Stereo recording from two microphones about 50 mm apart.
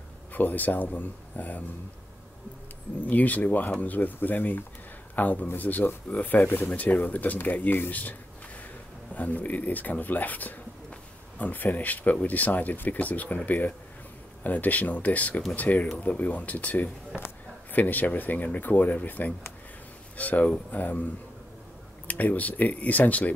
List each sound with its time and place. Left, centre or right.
0.3 s speech: left
3.1 s speech: left
22.0 s speech: left